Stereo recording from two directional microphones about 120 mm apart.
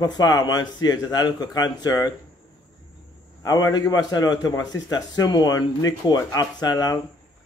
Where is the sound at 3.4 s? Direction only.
30° left (ahead or behind).